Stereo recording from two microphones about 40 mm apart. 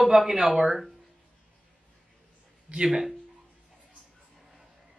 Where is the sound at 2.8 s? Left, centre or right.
Centre.